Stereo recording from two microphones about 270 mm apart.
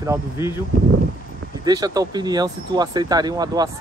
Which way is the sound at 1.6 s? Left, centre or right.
Centre.